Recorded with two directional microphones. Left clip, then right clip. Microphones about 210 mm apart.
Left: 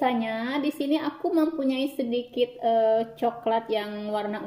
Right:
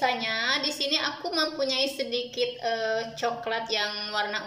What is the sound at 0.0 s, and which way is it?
A woman's voice, 40° left (ahead or behind).